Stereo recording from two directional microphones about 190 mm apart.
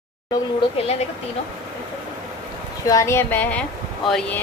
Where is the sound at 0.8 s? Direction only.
35° left (ahead or behind).